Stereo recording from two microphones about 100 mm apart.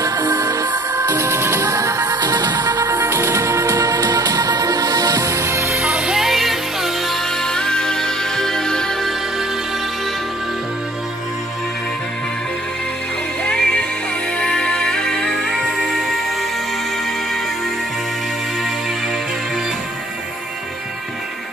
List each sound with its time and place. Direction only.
0.0 s music: 35° right (ahead or behind)
5.8 s music: 10° right (ahead or behind); by 9.1 s 5° left (ahead or behind)
13.4 s music: 5° left (ahead or behind)